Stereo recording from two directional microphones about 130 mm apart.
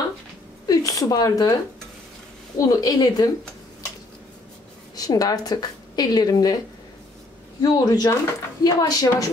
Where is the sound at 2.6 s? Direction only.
25° left (ahead or behind).